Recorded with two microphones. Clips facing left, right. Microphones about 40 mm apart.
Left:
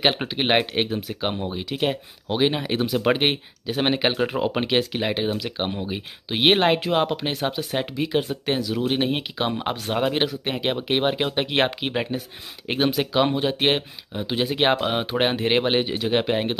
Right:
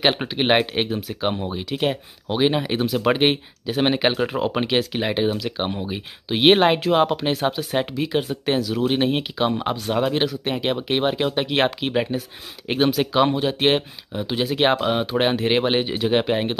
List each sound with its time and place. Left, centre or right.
0.0 s speech: centre
10.5 s speech: centre
15.0 s speech: centre
15.2 s speech: centre